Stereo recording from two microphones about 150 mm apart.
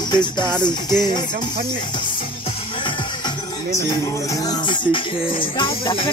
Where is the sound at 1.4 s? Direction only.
30° left (ahead or behind).